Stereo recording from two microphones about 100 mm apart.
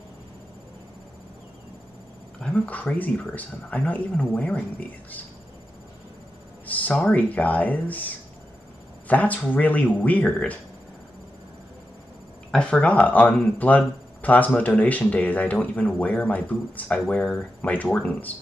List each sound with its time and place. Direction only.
2.4 s speech: 15° left (ahead or behind)
6.6 s speech: 15° left (ahead or behind)
12.4 s speech: 10° left (ahead or behind)